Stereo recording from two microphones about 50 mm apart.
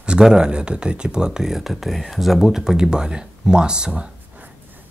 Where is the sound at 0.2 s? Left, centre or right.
Centre.